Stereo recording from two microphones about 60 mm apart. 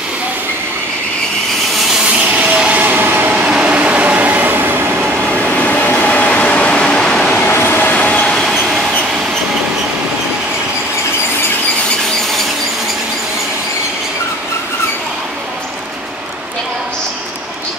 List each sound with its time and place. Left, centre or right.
2.2 s vehicle: centre
2.8 s train: right
3.3 s train: centre
5.4 s train: left
7.4 s train: left
7.8 s train: left
8.3 s train: centre